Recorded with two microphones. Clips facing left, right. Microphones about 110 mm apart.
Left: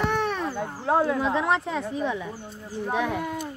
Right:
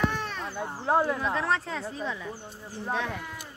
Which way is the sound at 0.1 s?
60° left (ahead or behind).